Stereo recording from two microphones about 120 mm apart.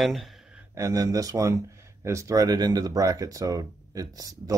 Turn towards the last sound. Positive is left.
turn(degrees=-30)  # may be behind; listen again after turning